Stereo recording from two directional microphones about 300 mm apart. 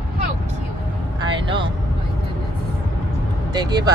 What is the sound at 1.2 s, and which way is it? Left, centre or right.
Vehicle, centre.